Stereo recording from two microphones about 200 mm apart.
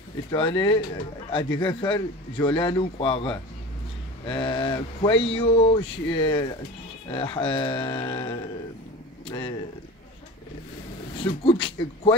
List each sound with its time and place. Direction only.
0.3 s a man's voice: 25° left (ahead or behind)
11.1 s speech: 25° left (ahead or behind)